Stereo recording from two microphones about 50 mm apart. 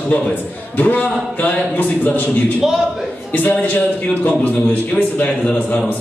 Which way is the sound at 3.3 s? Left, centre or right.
Left.